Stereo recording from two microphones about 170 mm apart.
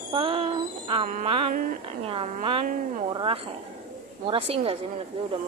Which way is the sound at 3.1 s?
30° right (ahead or behind).